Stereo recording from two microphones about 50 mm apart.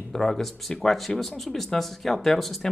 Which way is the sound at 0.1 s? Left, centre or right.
Centre.